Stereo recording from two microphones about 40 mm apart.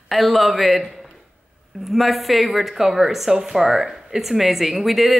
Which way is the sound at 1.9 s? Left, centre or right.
Centre.